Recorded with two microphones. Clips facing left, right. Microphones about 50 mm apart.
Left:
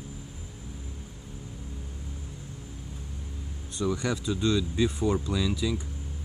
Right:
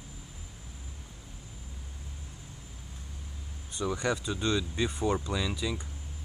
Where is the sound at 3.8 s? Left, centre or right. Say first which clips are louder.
Left 2 dB; centre.